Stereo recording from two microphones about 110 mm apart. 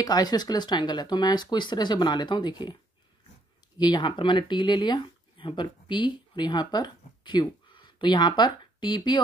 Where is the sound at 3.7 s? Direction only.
40° left (ahead or behind).